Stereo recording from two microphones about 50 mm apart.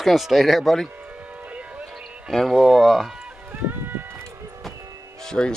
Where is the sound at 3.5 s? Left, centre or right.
Right.